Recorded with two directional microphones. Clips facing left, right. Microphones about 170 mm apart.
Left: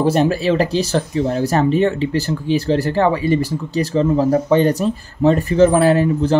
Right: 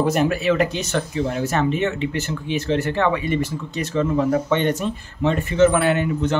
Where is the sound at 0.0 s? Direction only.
30° left (ahead or behind).